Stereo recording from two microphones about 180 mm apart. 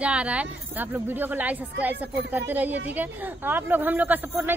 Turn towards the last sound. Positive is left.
turn(degrees=-10)  # may be behind; listen again after turning